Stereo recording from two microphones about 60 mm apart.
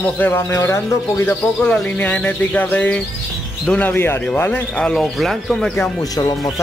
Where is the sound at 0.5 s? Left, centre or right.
Left.